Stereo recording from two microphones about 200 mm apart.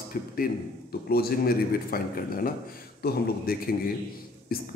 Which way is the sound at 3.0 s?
50° left (ahead or behind).